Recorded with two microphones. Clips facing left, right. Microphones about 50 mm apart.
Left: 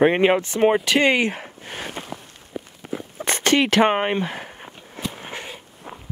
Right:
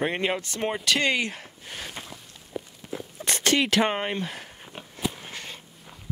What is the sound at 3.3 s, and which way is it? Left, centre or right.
Zipper, left.